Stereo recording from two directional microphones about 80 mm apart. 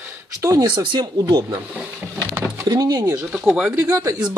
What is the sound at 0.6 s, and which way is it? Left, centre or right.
Speech, right.